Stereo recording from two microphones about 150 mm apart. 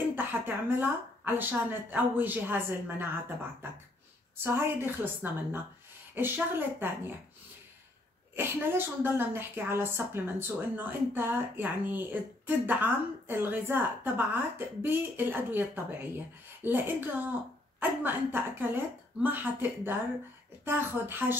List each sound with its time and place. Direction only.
0.1 s a woman's voice: 15° right (ahead or behind)
4.4 s a woman's voice: 15° right (ahead or behind)
8.4 s a woman's voice: 15° right (ahead or behind)